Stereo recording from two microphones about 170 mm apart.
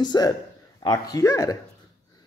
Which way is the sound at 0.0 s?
25° left (ahead or behind).